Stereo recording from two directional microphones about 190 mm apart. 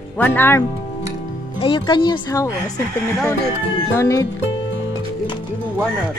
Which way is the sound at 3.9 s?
15° left (ahead or behind).